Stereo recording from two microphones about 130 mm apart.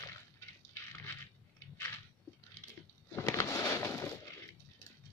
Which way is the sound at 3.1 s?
20° left (ahead or behind).